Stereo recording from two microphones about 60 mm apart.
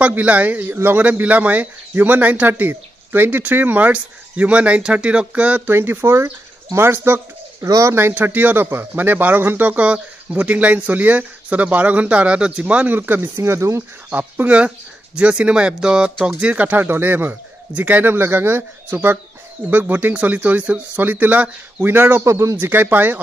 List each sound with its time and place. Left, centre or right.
0.0 s speech: right
0.7 s speech: right
1.2 s speech: right
5.7 s speech: right
7.6 s speech: right
8.1 s speech: right
13.4 s speech: right
14.1 s speech: right
22.2 s a man's voice: right
22.6 s speech: right